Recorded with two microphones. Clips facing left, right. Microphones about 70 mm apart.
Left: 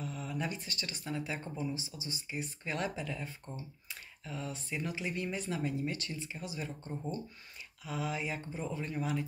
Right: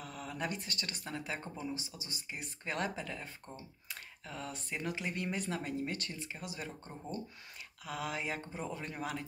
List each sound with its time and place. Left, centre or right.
0.0 s speech: right
4.2 s speech: right